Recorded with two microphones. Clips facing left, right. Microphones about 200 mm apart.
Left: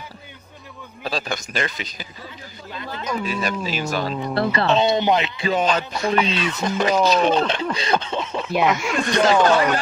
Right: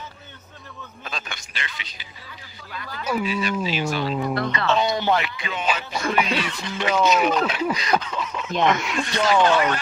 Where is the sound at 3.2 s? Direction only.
45° left (ahead or behind).